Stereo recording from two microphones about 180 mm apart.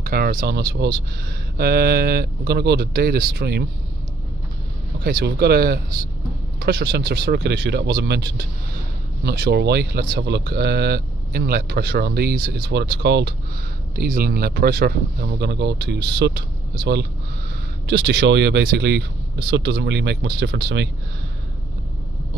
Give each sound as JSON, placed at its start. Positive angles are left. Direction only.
{"t": 0.0, "sound": "speech", "side_deg": -55}
{"t": 5.0, "sound": "speech", "side_deg": -65}
{"t": 13.9, "sound": "speech", "side_deg": -55}